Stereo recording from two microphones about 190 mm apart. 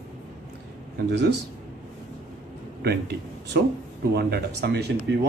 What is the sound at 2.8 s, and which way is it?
Speech, 60° right (ahead or behind).